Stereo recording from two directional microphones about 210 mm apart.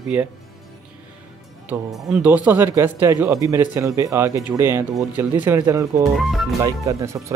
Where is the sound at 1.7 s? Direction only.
5° right (ahead or behind).